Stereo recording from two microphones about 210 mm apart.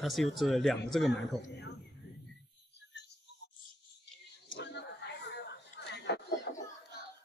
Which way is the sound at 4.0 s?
55° left (ahead or behind).